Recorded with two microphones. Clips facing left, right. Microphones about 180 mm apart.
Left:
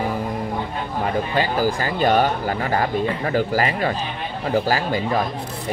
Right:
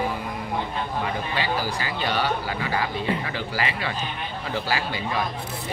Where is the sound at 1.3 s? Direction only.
45° left (ahead or behind).